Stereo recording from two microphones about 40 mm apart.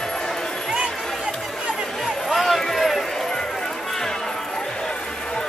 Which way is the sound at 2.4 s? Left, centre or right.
Centre.